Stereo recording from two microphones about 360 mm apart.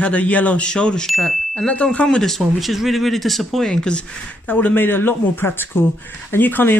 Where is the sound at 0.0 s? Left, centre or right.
Centre.